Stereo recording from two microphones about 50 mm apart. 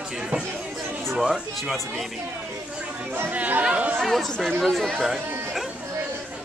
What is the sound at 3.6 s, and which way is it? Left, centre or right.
Speech, right.